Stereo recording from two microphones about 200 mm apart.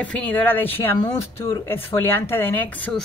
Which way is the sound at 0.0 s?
5° left (ahead or behind).